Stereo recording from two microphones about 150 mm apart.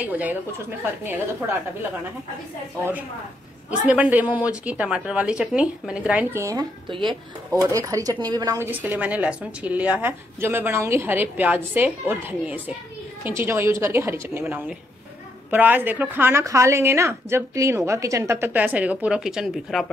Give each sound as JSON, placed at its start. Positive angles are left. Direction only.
{"t": 0.0, "sound": "a woman's voice", "side_deg": -10}
{"t": 3.8, "sound": "a woman's voice", "side_deg": -10}
{"t": 6.9, "sound": "speech", "side_deg": -35}
{"t": 7.7, "sound": "speech", "side_deg": -20}
{"t": 8.5, "sound": "a woman's voice", "side_deg": -15}